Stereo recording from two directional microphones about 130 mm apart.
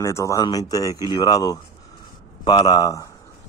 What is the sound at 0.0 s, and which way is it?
Speech, 25° left (ahead or behind).